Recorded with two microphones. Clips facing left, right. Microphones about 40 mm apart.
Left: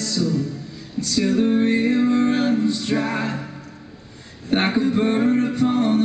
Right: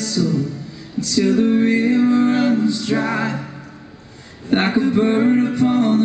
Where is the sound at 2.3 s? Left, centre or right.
Centre.